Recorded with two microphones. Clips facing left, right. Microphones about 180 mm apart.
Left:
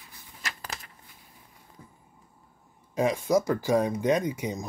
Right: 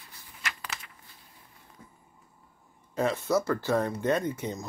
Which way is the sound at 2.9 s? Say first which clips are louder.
Left 3 dB; 10° left (ahead or behind).